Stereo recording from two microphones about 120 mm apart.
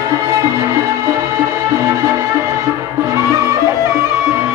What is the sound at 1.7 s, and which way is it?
Music, 30° right (ahead or behind).